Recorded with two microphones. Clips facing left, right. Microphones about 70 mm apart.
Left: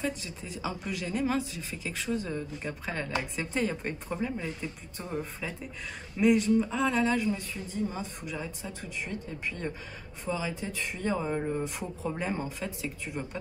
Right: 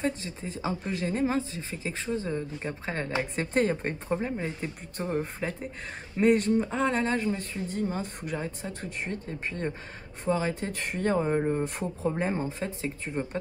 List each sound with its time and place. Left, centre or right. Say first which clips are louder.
0.0 s speech: right 3 dB; right
3.3 s speech: right 6 dB; right
3.8 s speech: right 3 dB; right
5.2 s speech: right 5 dB; right
7.7 s speech: right 2 dB; right
11.1 s speech: right 6 dB; right